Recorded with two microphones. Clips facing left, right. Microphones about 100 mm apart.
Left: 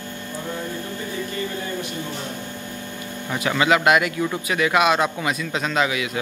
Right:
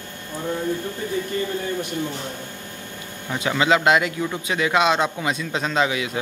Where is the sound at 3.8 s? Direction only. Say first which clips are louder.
Left 1 dB; 25° right (ahead or behind).